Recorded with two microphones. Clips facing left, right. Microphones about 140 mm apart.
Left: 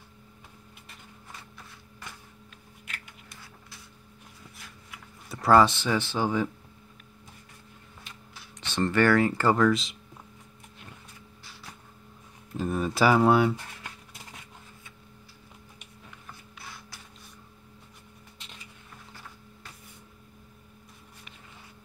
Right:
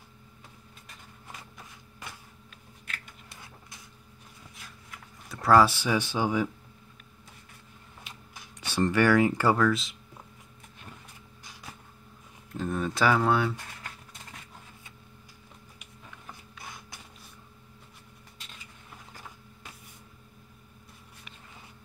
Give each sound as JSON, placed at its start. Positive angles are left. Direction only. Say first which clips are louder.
{"t": 5.3, "sound": "speech", "louder": "left 1 dB", "side_deg": 0}
{"t": 8.5, "sound": "speech", "louder": "even", "side_deg": -10}
{"t": 12.5, "sound": "speech", "louder": "left 2 dB", "side_deg": 5}
{"t": 16.6, "sound": "a sound", "louder": "right 1 dB", "side_deg": -20}